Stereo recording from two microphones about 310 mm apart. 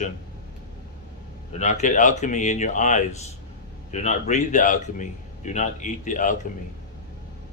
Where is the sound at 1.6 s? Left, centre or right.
Left.